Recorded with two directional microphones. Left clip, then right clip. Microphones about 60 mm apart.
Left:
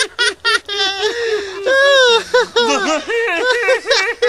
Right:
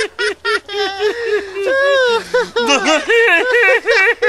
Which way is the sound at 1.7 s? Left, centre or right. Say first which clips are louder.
Left 3 dB; left.